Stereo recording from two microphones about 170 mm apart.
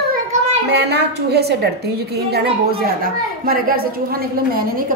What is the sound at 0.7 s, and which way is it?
A woman's voice, 75° right (ahead or behind).